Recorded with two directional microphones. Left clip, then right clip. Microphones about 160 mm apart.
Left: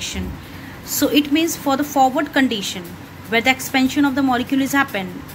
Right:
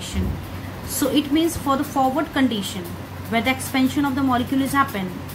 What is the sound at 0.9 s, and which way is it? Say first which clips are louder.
A woman's voice: left 3 dB; 35° left (ahead or behind).